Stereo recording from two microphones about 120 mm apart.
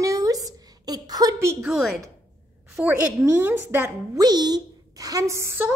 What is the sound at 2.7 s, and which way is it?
A woman's voice, 10° right (ahead or behind).